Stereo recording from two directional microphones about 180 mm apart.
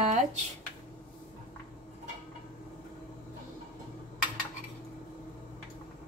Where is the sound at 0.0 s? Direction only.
40° right (ahead or behind).